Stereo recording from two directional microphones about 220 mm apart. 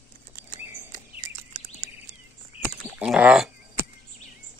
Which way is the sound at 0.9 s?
35° right (ahead or behind).